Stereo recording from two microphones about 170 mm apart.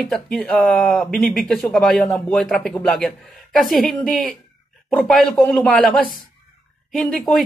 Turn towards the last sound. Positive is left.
turn(degrees=0)  # may be behind; listen again after turning